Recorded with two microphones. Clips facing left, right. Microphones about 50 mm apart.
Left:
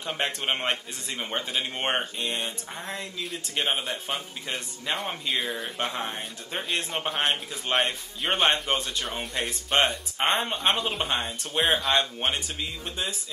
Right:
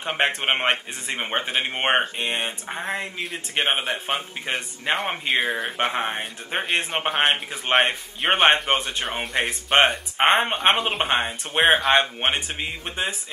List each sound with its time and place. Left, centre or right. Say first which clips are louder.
0.0 s a man's voice: right 6 dB; right